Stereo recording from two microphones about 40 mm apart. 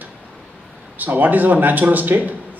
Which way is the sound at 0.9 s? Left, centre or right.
Right.